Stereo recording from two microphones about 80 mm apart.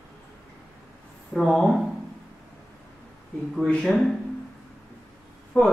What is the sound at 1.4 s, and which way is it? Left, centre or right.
Speech, centre.